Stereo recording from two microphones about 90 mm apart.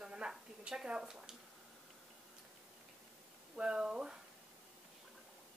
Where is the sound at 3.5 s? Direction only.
10° right (ahead or behind).